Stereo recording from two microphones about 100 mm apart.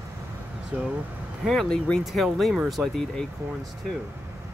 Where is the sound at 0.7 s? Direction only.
15° right (ahead or behind).